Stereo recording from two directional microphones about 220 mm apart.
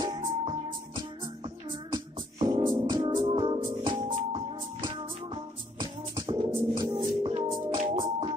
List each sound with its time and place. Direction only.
0.2 s music: 20° right (ahead or behind)